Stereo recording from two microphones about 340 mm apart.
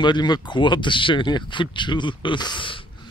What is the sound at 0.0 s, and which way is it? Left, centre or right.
Speech, centre.